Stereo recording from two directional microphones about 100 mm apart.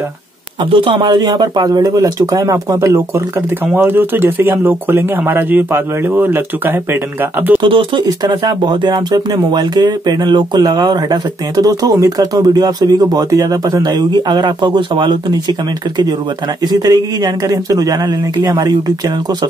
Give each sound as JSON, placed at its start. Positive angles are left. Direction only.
{"t": 0.7, "sound": "a man's voice", "side_deg": -60}
{"t": 7.6, "sound": "speech", "side_deg": -60}
{"t": 8.2, "sound": "speech", "side_deg": -45}
{"t": 16.6, "sound": "a man's voice", "side_deg": -40}